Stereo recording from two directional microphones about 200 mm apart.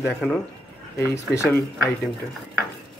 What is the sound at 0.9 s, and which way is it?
Speech, 15° left (ahead or behind).